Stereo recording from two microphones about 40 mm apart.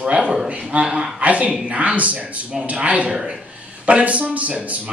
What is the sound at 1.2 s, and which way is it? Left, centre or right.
A man's voice, right.